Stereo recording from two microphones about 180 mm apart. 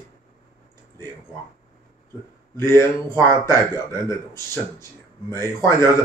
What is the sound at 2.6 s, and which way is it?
Speech, 15° left (ahead or behind).